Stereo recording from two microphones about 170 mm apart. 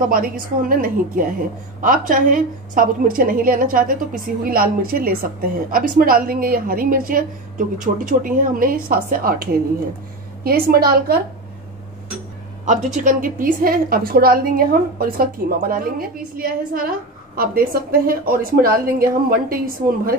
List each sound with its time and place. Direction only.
0.0 s a woman's voice: 55° right (ahead or behind)
12.6 s a woman's voice: 45° right (ahead or behind)